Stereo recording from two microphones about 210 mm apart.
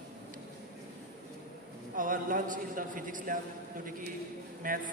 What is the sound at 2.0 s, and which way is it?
A man's voice, 40° right (ahead or behind).